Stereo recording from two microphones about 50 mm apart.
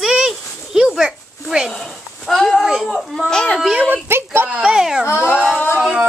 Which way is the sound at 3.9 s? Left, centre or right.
Right.